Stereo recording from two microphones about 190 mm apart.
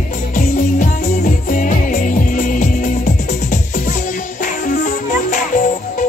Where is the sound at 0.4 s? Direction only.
45° left (ahead or behind).